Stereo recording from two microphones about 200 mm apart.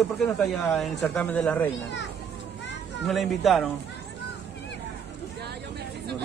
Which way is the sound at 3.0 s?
Centre (ahead or behind).